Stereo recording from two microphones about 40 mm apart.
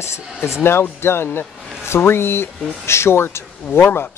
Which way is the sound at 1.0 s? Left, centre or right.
Left.